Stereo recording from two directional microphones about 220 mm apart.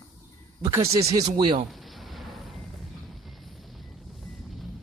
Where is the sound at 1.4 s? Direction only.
20° right (ahead or behind).